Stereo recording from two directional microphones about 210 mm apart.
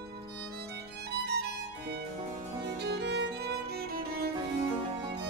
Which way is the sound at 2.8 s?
55° right (ahead or behind).